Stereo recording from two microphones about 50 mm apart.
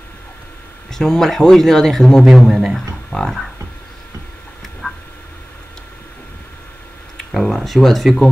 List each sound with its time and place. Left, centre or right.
0.9 s speech: centre
4.8 s a sound: centre
7.3 s speech: centre